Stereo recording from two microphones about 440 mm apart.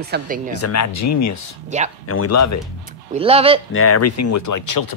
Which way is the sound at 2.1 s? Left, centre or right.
Left.